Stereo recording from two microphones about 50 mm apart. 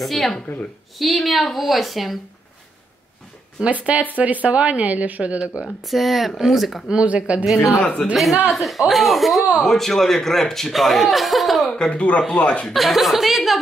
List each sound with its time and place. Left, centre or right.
0.0 s a woman's voice: centre
3.8 s a woman's voice: right
5.9 s a woman's voice: centre
6.9 s a woman's voice: right
7.8 s speech: left
8.5 s a woman's voice: centre
11.7 s speech: centre
12.6 s a woman's voice: centre